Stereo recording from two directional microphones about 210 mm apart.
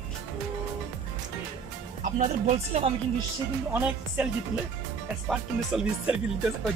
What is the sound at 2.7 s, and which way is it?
Speech, 30° right (ahead or behind).